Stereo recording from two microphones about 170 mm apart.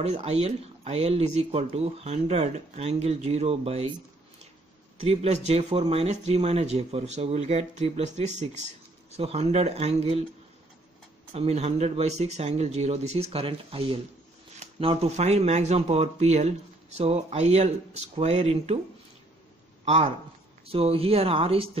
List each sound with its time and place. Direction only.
0.0 s speech: 40° right (ahead or behind)
5.0 s speech: 35° right (ahead or behind)
11.3 s speech: 40° right (ahead or behind)
19.8 s a man's voice: 40° right (ahead or behind)